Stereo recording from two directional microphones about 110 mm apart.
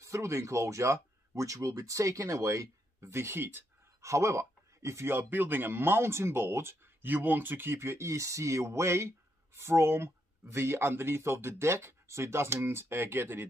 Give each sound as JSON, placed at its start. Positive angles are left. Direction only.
{"t": 0.0, "sound": "speech", "side_deg": -25}